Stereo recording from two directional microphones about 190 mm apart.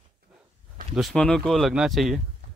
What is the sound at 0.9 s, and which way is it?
Speech, centre (ahead or behind).